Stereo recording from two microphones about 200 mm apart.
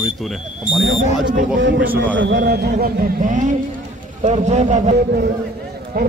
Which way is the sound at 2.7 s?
40° right (ahead or behind).